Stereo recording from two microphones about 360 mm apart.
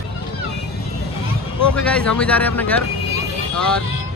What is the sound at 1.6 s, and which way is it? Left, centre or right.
Speech, centre.